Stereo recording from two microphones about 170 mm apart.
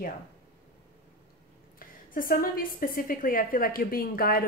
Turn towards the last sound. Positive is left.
turn(degrees=60)  # may be behind; listen again after turning